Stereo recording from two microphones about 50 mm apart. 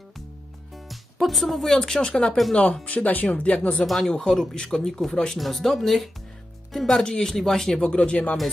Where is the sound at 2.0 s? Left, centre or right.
Centre.